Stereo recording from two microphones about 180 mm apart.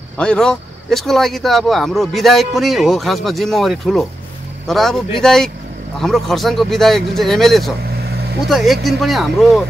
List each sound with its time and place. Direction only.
0.2 s speech: 5° left (ahead or behind)
7.9 s vehicle: 60° right (ahead or behind)
8.5 s speech: centre (ahead or behind)